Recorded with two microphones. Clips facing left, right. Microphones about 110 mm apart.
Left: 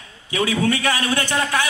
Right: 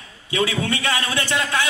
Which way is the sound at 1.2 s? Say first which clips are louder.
Left 1 dB; 25° left (ahead or behind).